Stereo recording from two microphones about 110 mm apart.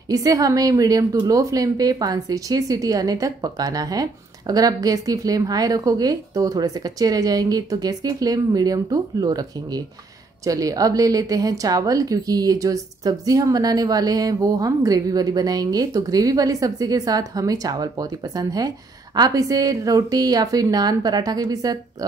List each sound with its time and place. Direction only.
0.1 s a woman's voice: 35° right (ahead or behind)